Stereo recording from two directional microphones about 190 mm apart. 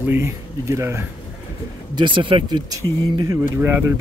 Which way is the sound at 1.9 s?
25° right (ahead or behind).